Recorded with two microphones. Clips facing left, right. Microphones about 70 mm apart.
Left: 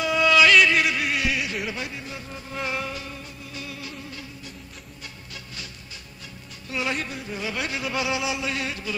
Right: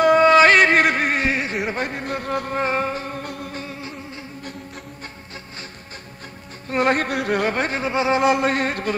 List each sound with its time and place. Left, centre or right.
0.0 s a sound: right
2.5 s music: right
3.5 s music: right
6.7 s speech: right
7.5 s speech: right
8.2 s music: right